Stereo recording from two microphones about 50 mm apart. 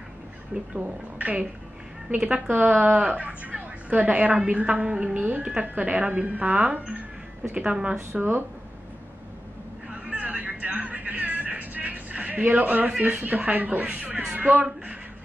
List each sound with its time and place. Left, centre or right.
0.5 s a woman's voice: right
4.6 s speech: centre
5.1 s speech: right
8.1 s speech: right
10.1 s music: right
13.0 s speech: right